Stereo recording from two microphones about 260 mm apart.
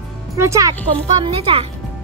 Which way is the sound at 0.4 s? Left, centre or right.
Centre.